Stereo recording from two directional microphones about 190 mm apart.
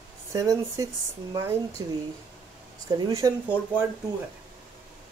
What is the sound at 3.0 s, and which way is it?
Speech, 15° right (ahead or behind).